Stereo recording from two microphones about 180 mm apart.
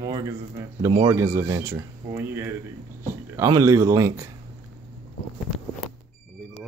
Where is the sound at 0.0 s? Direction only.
20° right (ahead or behind).